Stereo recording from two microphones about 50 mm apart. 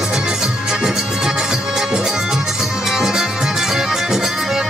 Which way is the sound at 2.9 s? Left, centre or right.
Centre.